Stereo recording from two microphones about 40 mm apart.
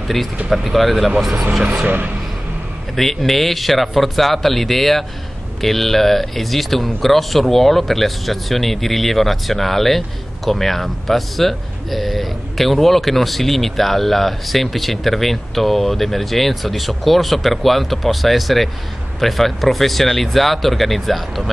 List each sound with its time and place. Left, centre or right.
0.5 s speech: centre
1.6 s speech: right
3.0 s speech: centre